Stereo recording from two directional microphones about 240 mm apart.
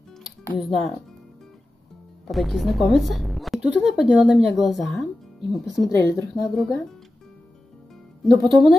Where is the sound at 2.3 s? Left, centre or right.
Centre.